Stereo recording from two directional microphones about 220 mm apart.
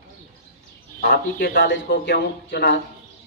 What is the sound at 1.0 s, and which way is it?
Speech, 45° left (ahead or behind).